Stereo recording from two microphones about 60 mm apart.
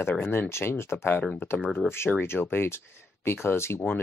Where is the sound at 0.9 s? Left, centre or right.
Left.